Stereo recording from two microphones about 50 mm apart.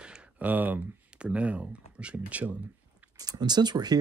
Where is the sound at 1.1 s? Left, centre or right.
Right.